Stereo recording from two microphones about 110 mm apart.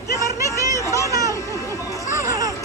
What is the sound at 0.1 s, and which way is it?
Chatter, 25° left (ahead or behind).